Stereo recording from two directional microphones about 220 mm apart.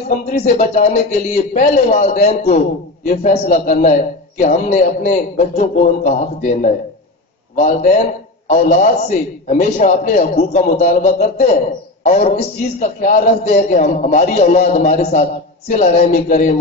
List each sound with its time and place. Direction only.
0.3 s a man's voice: 35° left (ahead or behind)
8.5 s a man's voice: 30° left (ahead or behind)